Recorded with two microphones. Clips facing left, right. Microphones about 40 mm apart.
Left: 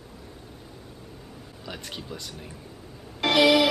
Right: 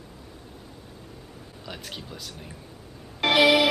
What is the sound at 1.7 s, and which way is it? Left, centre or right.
Speech, centre.